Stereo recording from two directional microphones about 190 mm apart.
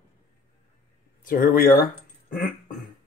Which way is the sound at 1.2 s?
50° left (ahead or behind).